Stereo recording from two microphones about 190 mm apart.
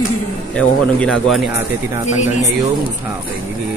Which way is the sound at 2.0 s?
40° left (ahead or behind).